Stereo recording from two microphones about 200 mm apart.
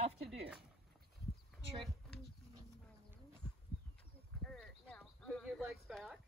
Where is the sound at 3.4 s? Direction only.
5° left (ahead or behind).